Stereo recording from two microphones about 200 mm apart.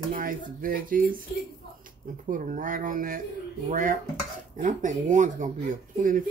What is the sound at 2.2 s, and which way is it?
Speech, 40° right (ahead or behind).